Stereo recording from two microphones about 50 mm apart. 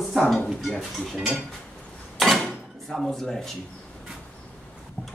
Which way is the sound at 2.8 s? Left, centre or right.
Centre.